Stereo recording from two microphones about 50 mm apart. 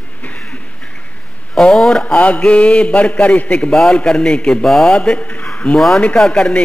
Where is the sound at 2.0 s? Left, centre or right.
Left.